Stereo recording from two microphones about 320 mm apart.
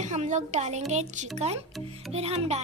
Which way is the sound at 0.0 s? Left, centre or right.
Right.